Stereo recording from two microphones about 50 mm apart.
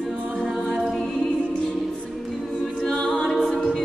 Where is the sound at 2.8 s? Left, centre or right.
Centre.